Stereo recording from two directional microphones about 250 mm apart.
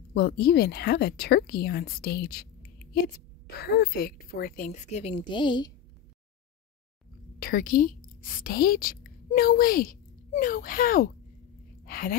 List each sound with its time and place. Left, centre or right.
0.1 s speech: left
3.4 s speech: left; by 5.7 s centre
7.3 s a woman's voice: left